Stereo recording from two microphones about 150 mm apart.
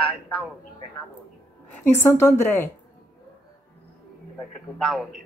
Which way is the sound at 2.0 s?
20° left (ahead or behind).